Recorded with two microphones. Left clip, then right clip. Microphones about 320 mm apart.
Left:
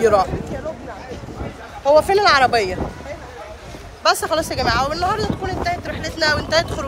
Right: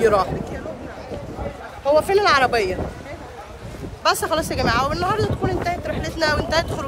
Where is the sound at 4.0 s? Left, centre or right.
Centre.